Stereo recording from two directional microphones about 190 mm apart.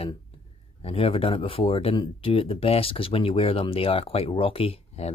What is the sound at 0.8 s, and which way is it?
Speech, 30° left (ahead or behind).